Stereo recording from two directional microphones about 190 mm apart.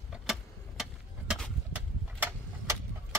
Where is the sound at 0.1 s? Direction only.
Centre (ahead or behind).